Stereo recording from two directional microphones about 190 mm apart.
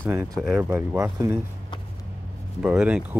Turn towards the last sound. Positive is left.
turn(degrees=-5)  # may be behind; listen again after turning